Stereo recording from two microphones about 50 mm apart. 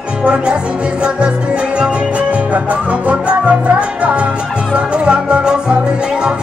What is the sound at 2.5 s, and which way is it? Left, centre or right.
Music, right.